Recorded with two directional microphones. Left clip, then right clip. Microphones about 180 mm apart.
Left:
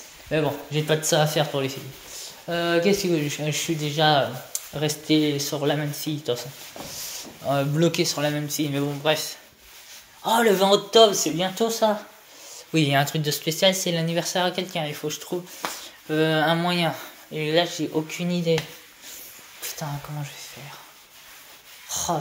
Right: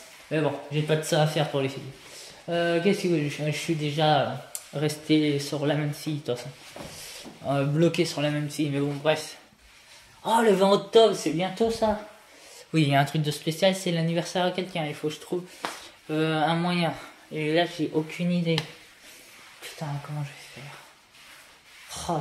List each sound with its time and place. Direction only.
0.3 s speech: 15° left (ahead or behind)
1.0 s speech: centre (ahead or behind)
7.4 s speech: 5° right (ahead or behind)
21.8 s a sound: centre (ahead or behind)